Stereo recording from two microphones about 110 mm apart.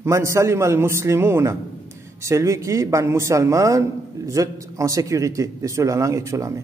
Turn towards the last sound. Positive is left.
turn(degrees=-30)  # may be behind; listen again after turning